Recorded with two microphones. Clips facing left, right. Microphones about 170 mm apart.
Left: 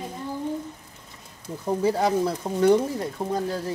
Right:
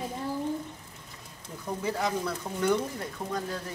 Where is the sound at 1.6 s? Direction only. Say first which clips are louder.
Left 8 dB; 30° left (ahead or behind).